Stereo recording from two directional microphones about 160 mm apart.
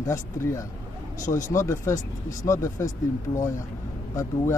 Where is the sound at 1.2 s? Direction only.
50° left (ahead or behind).